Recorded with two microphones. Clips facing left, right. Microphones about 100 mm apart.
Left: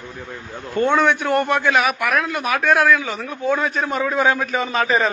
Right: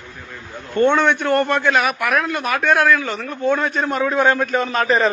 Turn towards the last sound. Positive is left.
turn(degrees=0)  # may be behind; listen again after turning